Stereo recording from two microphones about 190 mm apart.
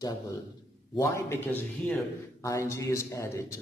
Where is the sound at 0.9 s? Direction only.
15° left (ahead or behind).